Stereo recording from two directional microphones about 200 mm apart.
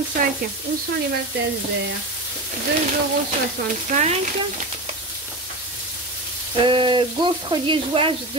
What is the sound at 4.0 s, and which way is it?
Speech, 35° right (ahead or behind).